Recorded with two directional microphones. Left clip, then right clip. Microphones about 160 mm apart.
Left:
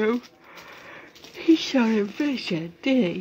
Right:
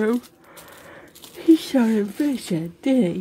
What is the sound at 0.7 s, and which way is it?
Speech, 35° right (ahead or behind).